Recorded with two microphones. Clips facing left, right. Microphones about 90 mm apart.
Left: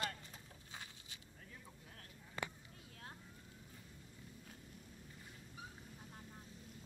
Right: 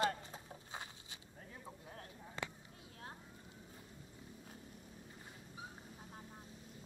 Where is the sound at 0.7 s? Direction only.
30° right (ahead or behind).